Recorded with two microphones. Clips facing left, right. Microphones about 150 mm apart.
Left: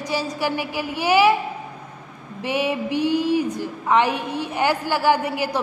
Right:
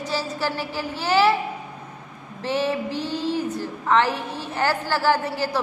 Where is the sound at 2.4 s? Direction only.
15° left (ahead or behind).